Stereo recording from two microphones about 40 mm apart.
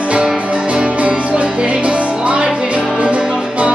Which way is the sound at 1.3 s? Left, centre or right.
Right.